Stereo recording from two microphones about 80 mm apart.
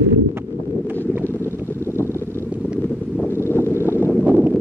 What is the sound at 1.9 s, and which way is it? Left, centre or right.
Vehicle, left.